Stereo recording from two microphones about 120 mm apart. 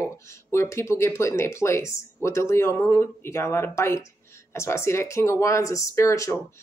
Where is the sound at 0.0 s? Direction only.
25° left (ahead or behind).